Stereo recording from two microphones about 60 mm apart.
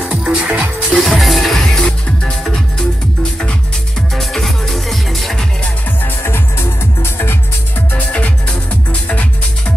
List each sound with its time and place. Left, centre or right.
0.0 s music: centre
0.9 s music: centre
4.1 s music: centre
6.0 s music: left
9.1 s music: left